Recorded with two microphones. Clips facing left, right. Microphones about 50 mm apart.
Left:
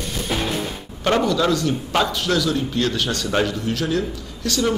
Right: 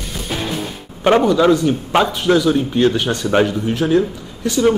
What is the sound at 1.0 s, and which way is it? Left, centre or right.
A man's voice, right.